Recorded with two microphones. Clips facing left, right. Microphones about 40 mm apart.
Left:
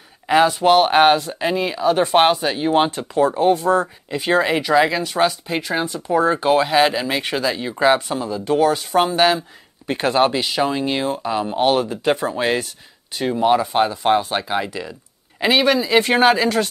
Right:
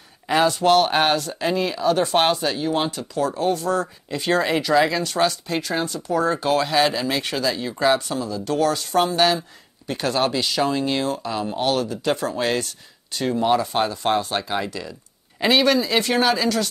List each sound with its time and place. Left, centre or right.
0.3 s speech: centre
2.6 s speech: left; by 16.0 s centre
16.0 s speech: left